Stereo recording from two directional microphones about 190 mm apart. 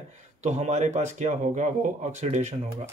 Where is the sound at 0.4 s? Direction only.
35° right (ahead or behind).